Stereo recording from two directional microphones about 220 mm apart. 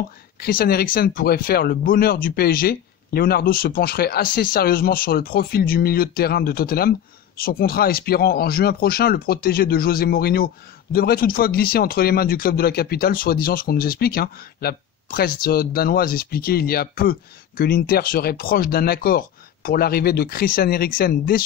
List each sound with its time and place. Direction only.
0.4 s speech: 40° left (ahead or behind)